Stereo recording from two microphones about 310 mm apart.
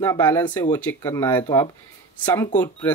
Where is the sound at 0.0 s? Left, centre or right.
Centre.